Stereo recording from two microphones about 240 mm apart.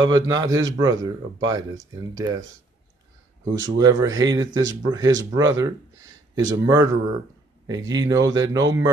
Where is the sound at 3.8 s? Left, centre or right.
Centre.